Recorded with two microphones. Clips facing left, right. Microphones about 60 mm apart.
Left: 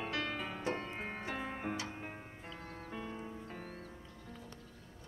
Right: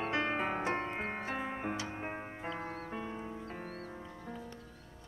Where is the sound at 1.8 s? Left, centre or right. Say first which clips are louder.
Right 4 dB; right.